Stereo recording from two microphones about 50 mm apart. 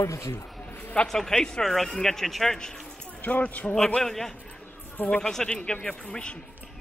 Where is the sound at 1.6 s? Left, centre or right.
Centre.